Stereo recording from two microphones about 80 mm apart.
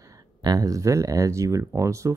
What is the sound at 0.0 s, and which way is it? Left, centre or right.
Speech, right.